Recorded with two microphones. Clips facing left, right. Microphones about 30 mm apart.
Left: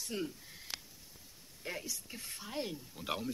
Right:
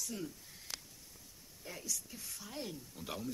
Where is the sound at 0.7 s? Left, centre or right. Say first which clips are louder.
Left 2 dB; left.